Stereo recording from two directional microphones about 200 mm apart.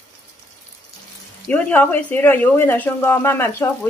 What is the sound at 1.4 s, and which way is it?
Speech, 5° left (ahead or behind).